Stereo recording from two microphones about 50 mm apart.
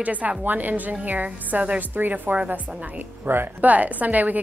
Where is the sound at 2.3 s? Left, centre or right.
Right.